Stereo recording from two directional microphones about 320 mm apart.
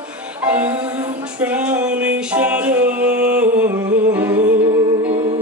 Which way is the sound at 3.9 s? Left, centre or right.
Right.